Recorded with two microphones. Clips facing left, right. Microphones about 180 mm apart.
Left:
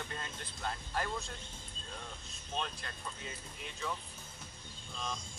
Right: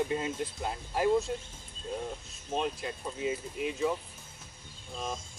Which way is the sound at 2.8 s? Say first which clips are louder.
Right 12 dB; 10° right (ahead or behind).